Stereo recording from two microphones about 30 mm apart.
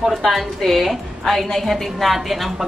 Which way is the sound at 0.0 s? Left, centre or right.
Centre.